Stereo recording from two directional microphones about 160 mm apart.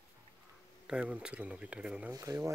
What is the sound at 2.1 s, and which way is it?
Speech, 20° right (ahead or behind).